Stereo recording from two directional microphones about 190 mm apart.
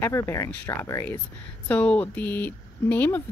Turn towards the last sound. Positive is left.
turn(degrees=10)  # may be behind; listen again after turning